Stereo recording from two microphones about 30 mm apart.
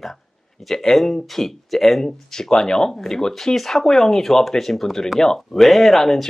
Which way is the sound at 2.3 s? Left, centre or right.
Centre.